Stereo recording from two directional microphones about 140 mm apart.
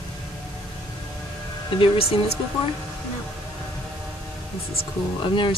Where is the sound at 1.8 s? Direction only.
45° left (ahead or behind).